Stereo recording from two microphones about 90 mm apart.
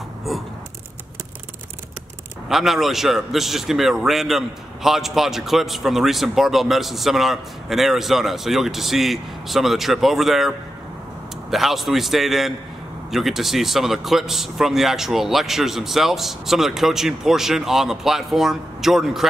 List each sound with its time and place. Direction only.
2.5 s a man's voice: centre (ahead or behind)
11.5 s a man's voice: centre (ahead or behind)